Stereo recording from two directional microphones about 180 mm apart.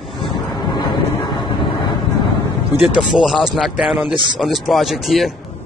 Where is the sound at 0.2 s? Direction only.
25° left (ahead or behind).